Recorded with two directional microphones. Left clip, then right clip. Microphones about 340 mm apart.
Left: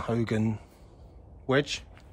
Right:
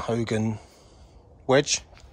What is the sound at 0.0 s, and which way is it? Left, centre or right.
Speech, centre.